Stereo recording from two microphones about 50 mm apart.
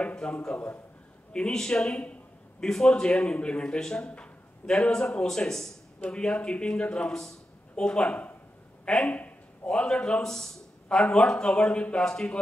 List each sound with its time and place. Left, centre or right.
0.0 s a man's voice: centre
9.1 s a man's voice: left